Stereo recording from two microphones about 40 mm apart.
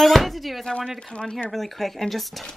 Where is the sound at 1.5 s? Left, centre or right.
Centre.